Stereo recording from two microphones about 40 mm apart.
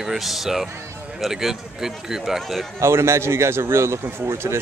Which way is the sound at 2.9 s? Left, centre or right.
Right.